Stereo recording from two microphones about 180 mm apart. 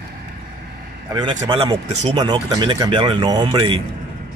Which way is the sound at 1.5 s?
25° right (ahead or behind).